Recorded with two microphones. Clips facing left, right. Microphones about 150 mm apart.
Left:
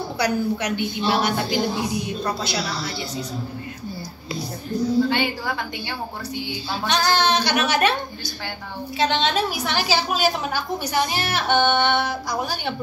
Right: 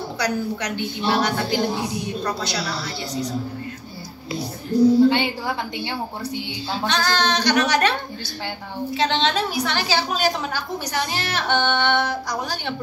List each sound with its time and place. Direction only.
0.2 s a woman's voice: 10° left (ahead or behind)
4.7 s speech: 35° right (ahead or behind)
5.1 s a woman's voice: 20° right (ahead or behind)
6.9 s a woman's voice: 10° left (ahead or behind)
8.9 s a woman's voice: 15° left (ahead or behind)